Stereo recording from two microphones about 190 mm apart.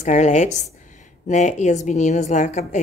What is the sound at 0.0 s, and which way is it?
A woman's voice, 40° left (ahead or behind).